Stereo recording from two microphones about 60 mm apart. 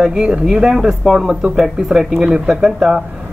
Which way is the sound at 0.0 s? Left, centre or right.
Centre.